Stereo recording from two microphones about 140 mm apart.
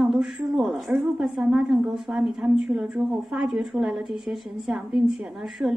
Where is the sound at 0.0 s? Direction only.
Centre (ahead or behind).